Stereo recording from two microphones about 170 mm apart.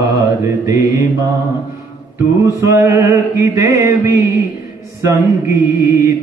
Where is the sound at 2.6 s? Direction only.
15° right (ahead or behind).